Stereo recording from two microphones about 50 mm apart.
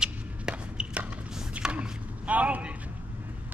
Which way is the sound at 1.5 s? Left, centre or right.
Right.